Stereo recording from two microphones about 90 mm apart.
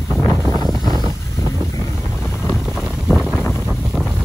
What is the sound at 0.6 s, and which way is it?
Boat, 50° right (ahead or behind).